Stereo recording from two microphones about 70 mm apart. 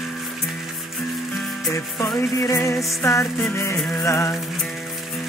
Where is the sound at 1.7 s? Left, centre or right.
Left.